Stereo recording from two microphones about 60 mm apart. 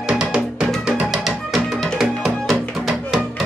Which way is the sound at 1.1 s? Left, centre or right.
Centre.